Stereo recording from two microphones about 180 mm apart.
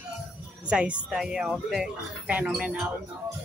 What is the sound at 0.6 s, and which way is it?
Speech, 5° right (ahead or behind).